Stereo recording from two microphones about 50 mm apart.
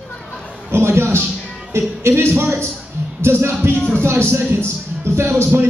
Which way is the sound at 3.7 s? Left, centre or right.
Left.